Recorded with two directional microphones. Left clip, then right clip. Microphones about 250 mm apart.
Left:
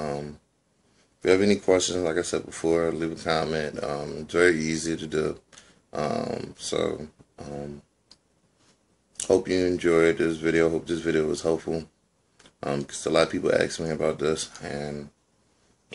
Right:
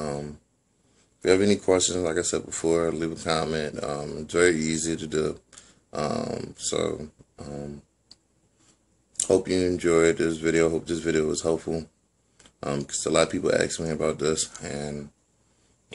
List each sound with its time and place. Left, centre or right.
0.0 s a sound: centre
1.2 s speech: centre
9.3 s speech: centre